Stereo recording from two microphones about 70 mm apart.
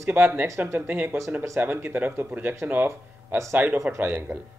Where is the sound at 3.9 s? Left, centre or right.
Right.